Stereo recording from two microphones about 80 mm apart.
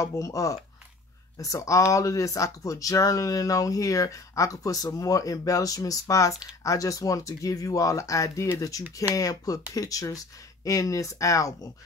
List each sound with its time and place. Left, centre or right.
0.0 s speech: left